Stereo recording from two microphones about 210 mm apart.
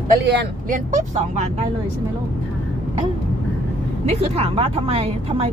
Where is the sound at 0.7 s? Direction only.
35° right (ahead or behind).